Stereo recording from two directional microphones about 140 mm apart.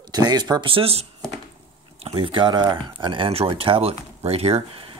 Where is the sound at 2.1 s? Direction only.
40° right (ahead or behind).